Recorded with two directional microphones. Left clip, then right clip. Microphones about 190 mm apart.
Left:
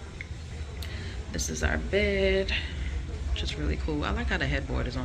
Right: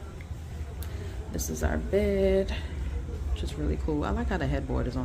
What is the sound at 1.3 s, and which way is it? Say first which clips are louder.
Speech: left 2 dB; 25° right (ahead or behind).